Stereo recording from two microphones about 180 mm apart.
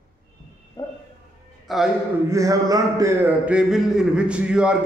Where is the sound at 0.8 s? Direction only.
20° left (ahead or behind).